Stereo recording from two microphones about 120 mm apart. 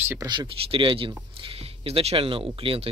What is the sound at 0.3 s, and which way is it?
Speech, 40° right (ahead or behind).